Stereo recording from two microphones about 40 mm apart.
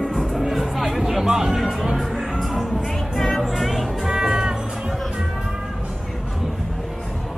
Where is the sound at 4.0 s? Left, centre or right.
Centre.